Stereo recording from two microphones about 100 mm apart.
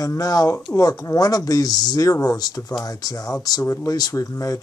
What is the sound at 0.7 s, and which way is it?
Speech, 35° left (ahead or behind).